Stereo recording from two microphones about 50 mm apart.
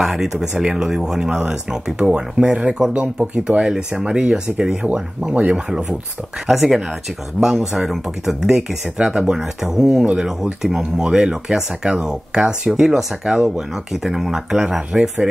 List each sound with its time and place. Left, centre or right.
0.0 s speech: centre
6.4 s speech: centre